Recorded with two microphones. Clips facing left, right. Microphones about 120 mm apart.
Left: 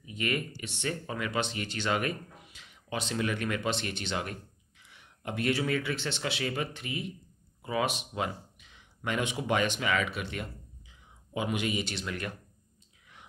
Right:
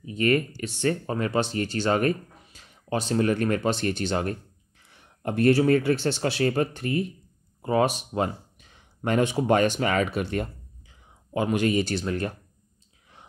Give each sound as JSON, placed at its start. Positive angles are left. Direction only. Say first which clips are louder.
{"t": 0.0, "sound": "speech", "louder": "right 10 dB", "side_deg": -40}